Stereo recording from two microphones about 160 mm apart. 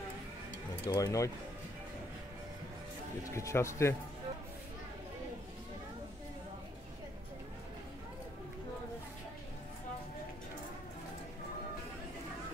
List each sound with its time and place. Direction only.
0.8 s speech: 20° left (ahead or behind)
3.3 s speech: 20° left (ahead or behind)